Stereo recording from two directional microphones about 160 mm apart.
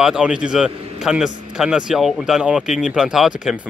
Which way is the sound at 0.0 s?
5° right (ahead or behind).